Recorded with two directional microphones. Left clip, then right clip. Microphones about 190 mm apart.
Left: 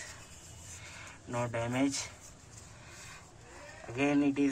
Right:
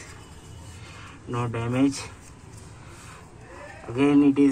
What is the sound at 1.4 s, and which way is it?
Speech, 30° left (ahead or behind).